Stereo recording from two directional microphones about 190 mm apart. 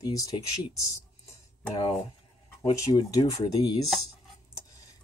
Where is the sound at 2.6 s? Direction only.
20° left (ahead or behind).